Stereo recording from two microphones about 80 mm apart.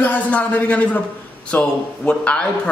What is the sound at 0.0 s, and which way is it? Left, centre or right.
A man's voice, centre.